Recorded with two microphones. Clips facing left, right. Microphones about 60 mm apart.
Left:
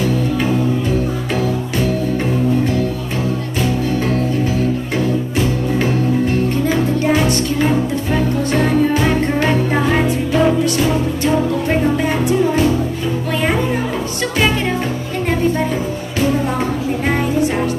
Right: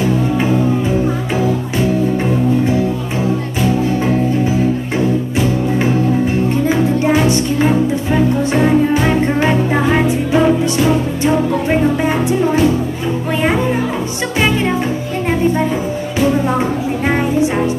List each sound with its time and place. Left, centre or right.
0.0 s music: centre
5.4 s music: centre
17.1 s music: centre